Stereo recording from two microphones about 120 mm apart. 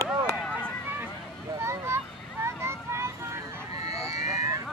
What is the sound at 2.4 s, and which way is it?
Vehicle, 20° right (ahead or behind).